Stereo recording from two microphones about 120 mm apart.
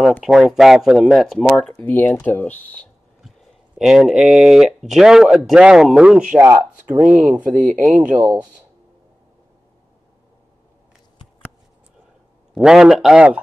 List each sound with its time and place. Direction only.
0.2 s speech: 5° right (ahead or behind); by 2.9 s 10° left (ahead or behind)
3.2 s speech: 5° right (ahead or behind)
12.5 s speech: 5° right (ahead or behind)